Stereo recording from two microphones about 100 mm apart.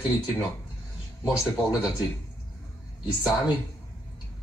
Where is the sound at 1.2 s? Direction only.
10° right (ahead or behind).